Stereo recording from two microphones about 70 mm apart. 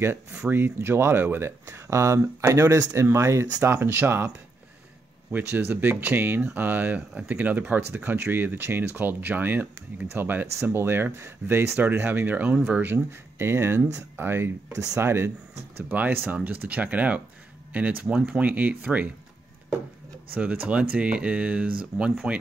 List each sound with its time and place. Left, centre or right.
0.5 s speech: right
3.7 s speech: right
5.5 s speech: right
5.8 s speech: right
11.8 s speech: right
12.8 s speech: right
20.3 s speech: right